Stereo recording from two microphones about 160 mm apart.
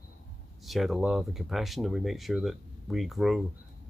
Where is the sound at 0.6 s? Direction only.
Centre (ahead or behind).